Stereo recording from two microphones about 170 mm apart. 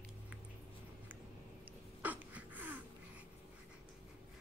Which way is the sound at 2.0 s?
10° right (ahead or behind).